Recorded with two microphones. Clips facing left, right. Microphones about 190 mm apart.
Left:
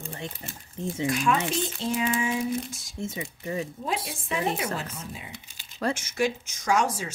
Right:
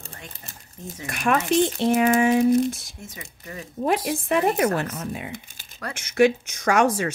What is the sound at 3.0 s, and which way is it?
Speech, 25° left (ahead or behind).